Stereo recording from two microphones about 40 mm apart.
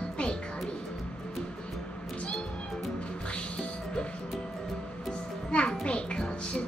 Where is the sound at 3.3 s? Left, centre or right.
Left.